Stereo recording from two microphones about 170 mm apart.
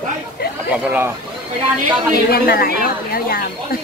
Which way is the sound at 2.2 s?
65° left (ahead or behind).